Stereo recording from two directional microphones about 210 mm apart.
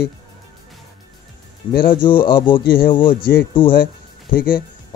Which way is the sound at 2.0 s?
25° left (ahead or behind).